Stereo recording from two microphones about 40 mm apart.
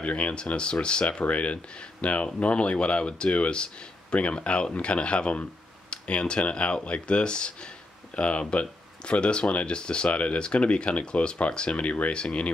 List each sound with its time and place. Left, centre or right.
0.0 s speech: left